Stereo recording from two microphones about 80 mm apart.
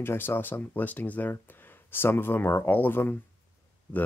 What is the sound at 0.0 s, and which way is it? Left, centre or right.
Speech, left.